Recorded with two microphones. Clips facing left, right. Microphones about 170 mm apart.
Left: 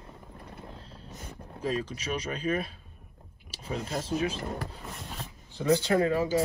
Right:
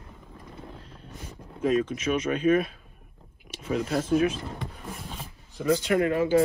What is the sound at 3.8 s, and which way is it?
Speech, 55° right (ahead or behind).